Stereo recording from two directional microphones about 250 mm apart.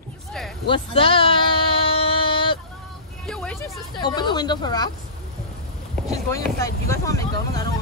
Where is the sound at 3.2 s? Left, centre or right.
Centre.